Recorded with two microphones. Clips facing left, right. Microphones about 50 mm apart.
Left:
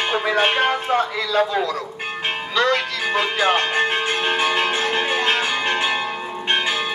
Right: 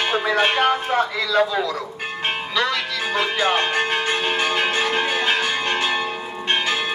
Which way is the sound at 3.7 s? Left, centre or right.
Centre.